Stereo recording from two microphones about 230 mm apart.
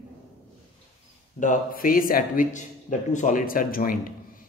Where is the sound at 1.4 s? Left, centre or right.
Left.